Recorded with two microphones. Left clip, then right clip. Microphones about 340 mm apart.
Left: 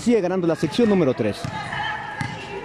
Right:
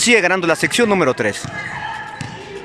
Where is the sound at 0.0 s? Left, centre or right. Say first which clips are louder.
Right 7 dB; right.